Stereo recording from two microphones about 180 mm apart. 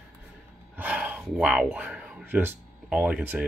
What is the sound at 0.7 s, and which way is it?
Speech, 10° right (ahead or behind).